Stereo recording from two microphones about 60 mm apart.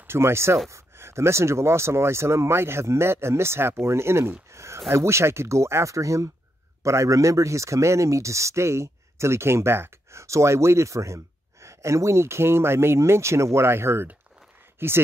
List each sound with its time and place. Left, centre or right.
0.0 s speech: right